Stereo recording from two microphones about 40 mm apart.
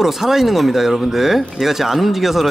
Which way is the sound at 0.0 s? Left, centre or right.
Centre.